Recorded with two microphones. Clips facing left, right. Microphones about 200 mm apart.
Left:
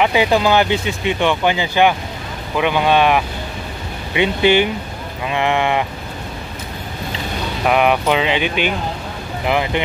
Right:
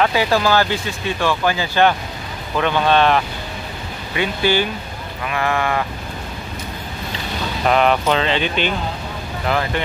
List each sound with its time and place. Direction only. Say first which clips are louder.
0.0 s speech: left 2 dB; 20° left (ahead or behind)
7.6 s speech: left 1 dB; 10° left (ahead or behind)